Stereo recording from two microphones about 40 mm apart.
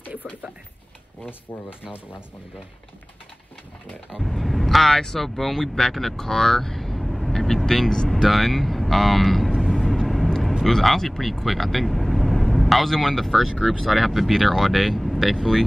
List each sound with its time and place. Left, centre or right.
0.1 s speech: right
4.2 s speech: centre
4.9 s speech: centre
9.6 s vehicle: centre
10.7 s speech: centre